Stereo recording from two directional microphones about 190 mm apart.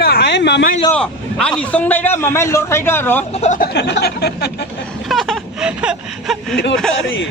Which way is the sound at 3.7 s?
60° left (ahead or behind).